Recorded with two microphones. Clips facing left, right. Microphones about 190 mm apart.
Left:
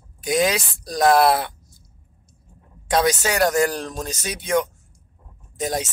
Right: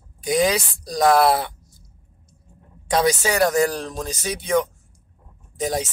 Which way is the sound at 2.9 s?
10° right (ahead or behind).